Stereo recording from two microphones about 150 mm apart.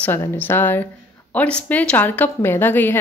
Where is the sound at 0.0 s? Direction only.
15° left (ahead or behind).